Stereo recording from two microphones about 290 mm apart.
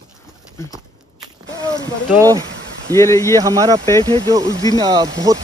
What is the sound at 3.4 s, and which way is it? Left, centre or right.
Speech, centre.